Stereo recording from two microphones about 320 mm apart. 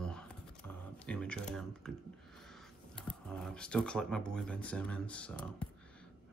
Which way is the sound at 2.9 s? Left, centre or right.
Centre.